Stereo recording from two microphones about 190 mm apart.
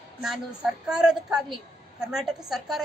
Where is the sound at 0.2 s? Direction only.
Centre (ahead or behind).